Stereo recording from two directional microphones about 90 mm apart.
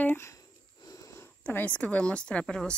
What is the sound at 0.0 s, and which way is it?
Sniff, 20° left (ahead or behind).